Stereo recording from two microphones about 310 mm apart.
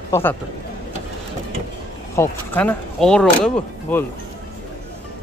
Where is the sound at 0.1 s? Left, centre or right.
Centre.